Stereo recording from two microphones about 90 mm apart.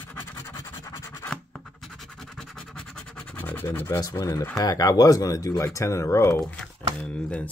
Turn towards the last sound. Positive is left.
turn(degrees=10)  # may be behind; listen again after turning